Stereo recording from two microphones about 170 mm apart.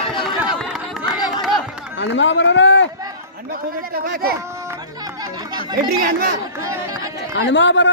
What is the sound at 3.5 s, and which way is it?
Speech, 60° right (ahead or behind).